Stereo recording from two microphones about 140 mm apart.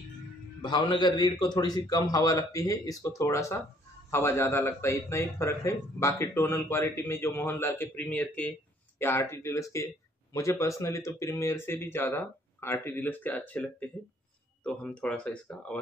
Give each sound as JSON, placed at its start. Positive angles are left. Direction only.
{"t": 0.6, "sound": "a man's voice", "side_deg": 35}